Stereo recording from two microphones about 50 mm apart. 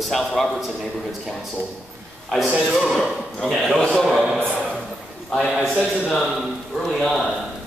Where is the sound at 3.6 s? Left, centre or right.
Centre.